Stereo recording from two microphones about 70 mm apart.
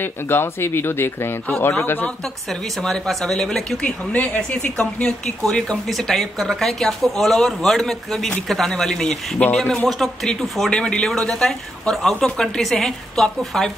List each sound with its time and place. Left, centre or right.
0.0 s speech: left
2.8 s speech: centre
3.8 s speech: left; by 13.7 s centre